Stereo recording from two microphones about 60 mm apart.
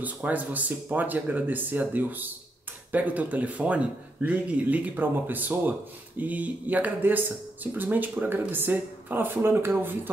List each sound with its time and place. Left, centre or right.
0.0 s speech: right